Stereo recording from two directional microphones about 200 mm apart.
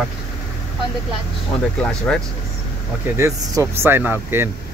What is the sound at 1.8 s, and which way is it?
Speech, 5° left (ahead or behind).